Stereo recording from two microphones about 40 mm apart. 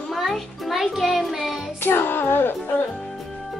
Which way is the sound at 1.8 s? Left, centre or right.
Left.